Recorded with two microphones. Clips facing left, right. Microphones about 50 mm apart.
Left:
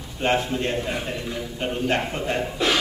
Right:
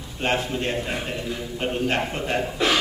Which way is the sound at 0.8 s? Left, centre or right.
Centre.